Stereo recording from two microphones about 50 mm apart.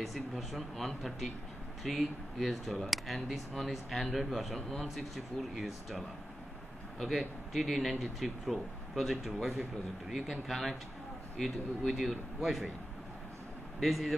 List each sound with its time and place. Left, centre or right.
0.0 s speech: centre
7.2 s speech: centre
13.7 s speech: centre